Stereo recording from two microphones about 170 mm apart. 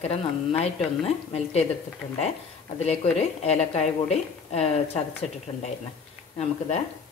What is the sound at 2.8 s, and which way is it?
Speech, 40° left (ahead or behind).